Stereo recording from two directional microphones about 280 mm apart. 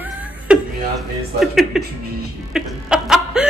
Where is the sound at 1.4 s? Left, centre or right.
Centre.